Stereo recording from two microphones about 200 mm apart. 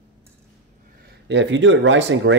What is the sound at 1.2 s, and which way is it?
Speech, 65° right (ahead or behind).